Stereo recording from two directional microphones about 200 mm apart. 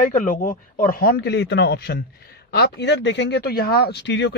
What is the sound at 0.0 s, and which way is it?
Speech, 45° left (ahead or behind).